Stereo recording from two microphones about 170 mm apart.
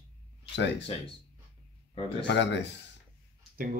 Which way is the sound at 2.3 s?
90° left.